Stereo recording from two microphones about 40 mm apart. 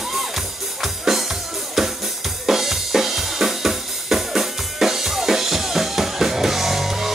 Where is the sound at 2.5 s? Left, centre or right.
Centre.